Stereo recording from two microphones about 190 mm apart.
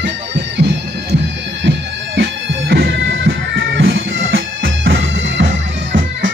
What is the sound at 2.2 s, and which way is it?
Bagpipes, 55° right (ahead or behind).